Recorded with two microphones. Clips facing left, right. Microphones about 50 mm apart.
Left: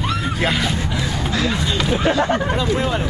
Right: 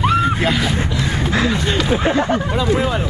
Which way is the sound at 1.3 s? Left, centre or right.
Right.